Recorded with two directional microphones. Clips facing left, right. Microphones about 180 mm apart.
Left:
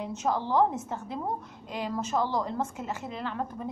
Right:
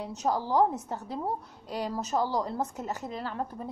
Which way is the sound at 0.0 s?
35° right (ahead or behind).